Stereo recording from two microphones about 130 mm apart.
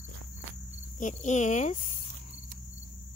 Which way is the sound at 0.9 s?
70° left (ahead or behind).